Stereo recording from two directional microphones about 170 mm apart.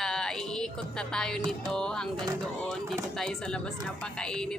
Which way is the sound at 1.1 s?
5° left (ahead or behind).